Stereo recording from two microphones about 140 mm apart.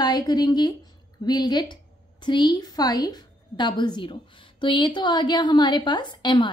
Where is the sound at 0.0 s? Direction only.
30° left (ahead or behind).